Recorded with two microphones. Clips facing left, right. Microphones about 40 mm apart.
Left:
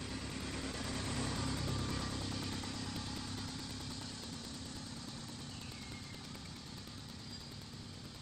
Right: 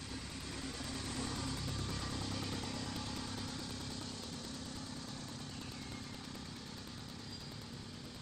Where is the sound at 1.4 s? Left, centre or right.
Centre.